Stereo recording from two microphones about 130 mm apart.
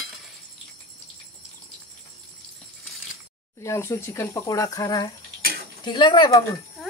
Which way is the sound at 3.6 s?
20° left (ahead or behind).